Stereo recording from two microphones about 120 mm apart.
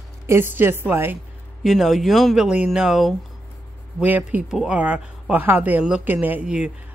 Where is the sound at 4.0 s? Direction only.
15° right (ahead or behind).